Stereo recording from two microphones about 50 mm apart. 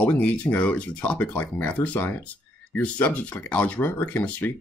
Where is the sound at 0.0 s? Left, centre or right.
Left.